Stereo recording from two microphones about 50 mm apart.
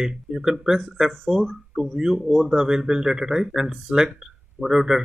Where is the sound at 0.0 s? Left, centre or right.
Centre.